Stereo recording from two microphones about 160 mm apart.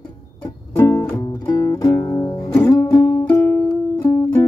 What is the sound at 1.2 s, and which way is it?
Music, 25° left (ahead or behind).